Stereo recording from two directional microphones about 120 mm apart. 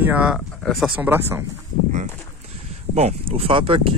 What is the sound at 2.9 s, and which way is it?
Speech, 60° right (ahead or behind).